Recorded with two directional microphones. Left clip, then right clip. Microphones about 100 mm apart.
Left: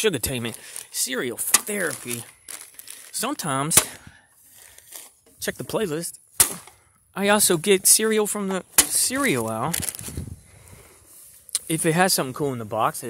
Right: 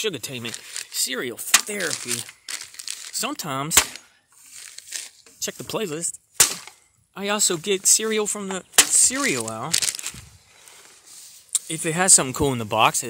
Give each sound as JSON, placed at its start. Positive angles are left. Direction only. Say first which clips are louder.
{"t": 0.0, "sound": "speech", "louder": "left 4 dB", "side_deg": 40}
{"t": 0.6, "sound": "speech", "louder": "right 3 dB", "side_deg": 20}
{"t": 1.8, "sound": "speech", "louder": "even", "side_deg": 15}
{"t": 2.4, "sound": "crumpling", "louder": "right 9 dB", "side_deg": 30}
{"t": 4.9, "sound": "a sound", "louder": "right 10 dB", "side_deg": 30}
{"t": 5.6, "sound": "speech", "louder": "left 2 dB", "side_deg": 20}
{"t": 5.9, "sound": "a sound", "louder": "right 4 dB", "side_deg": 35}
{"t": 7.2, "sound": "speech", "louder": "left 4 dB", "side_deg": 40}
{"t": 8.0, "sound": "speech", "louder": "left 2 dB", "side_deg": 25}
{"t": 8.4, "sound": "speech", "louder": "right 3 dB", "side_deg": 35}
{"t": 9.6, "sound": "speech", "louder": "right 3 dB", "side_deg": 55}
{"t": 11.5, "sound": "a sound", "louder": "left 3 dB", "side_deg": 45}
{"t": 12.4, "sound": "speech", "louder": "right 5 dB", "side_deg": -30}